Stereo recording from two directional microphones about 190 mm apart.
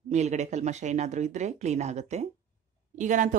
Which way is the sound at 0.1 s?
40° right (ahead or behind).